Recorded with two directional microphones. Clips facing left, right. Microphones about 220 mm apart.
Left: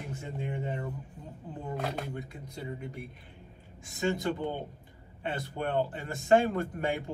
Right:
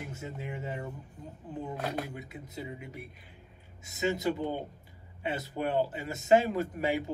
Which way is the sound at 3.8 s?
20° right (ahead or behind).